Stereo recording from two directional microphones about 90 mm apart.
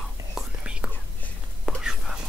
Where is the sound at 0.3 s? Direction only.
10° right (ahead or behind).